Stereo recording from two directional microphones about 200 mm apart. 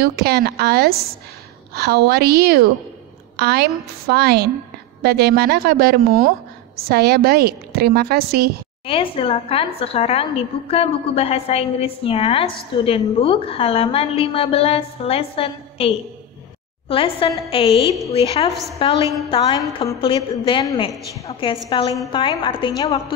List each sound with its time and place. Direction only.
0.0 s a woman's voice: 50° right (ahead or behind)
8.8 s a woman's voice: 25° left (ahead or behind)
16.9 s a woman's voice: 25° left (ahead or behind)